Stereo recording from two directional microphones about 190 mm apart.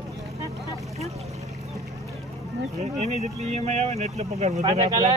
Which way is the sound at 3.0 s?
35° right (ahead or behind).